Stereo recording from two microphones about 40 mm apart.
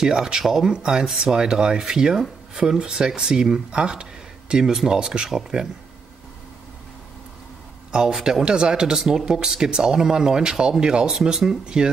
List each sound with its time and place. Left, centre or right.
0.0 s speech: centre
0.7 s speech: right
7.9 s speech: centre